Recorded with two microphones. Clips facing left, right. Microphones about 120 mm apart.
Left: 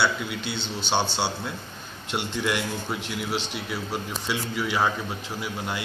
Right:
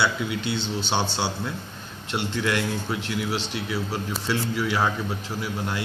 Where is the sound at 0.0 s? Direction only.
5° right (ahead or behind).